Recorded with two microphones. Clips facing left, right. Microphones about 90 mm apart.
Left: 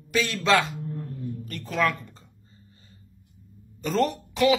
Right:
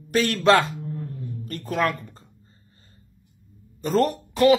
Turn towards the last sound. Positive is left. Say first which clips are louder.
# right 4 dB
turn(degrees=-50)  # may be behind; listen again after turning